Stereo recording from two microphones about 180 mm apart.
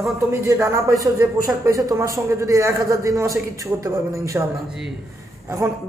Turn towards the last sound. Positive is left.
turn(degrees=-15)  # may be behind; listen again after turning